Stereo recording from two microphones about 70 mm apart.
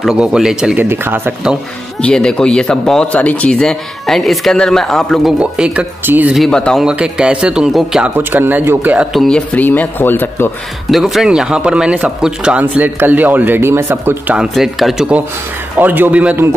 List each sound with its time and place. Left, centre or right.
0.1 s a man's voice: centre
0.7 s speech: right
2.0 s speech: centre
5.4 s a man's voice: centre
6.0 s a man's voice: right
6.5 s speech: centre
6.8 s a man's voice: centre
8.2 s a man's voice: right
9.3 s speech: left
10.9 s a man's voice: centre; by 14.1 s right
14.5 s speech: centre
15.8 s a man's voice: right